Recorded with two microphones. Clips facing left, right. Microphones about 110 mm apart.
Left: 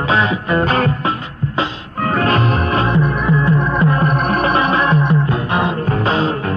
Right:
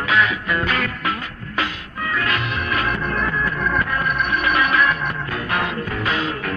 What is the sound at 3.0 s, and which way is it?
Music, 15° left (ahead or behind).